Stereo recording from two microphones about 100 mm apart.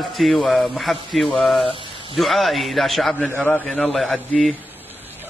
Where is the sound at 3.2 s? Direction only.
15° left (ahead or behind).